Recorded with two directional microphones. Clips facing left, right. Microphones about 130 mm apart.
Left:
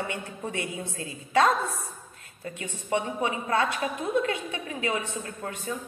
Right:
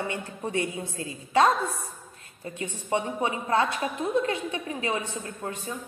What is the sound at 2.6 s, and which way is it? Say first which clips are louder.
A woman's voice: right 1 dB; 20° right (ahead or behind).